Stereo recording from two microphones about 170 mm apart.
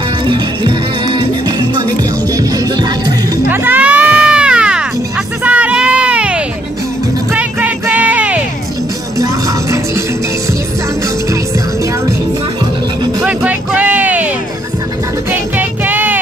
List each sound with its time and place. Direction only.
0.3 s music: 30° right (ahead or behind)
3.4 s music: 10° right (ahead or behind)
9.2 s music: 20° right (ahead or behind)
13.2 s a sound: 10° right (ahead or behind)
15.5 s music: 10° right (ahead or behind)